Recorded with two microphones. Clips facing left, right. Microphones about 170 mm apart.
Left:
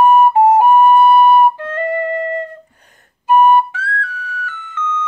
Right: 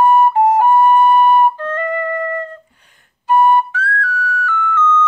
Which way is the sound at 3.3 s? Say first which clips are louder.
Left 2 dB; 15° left (ahead or behind).